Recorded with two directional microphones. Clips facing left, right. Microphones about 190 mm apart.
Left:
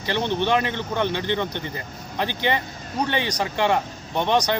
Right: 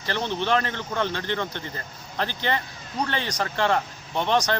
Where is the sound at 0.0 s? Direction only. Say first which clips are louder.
Left 4 dB; 20° left (ahead or behind).